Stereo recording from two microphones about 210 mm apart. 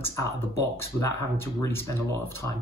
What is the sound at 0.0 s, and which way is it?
Speech, 15° left (ahead or behind).